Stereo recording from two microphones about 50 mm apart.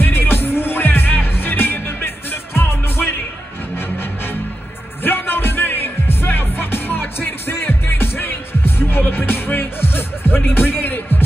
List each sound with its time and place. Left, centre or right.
0.0 s music: left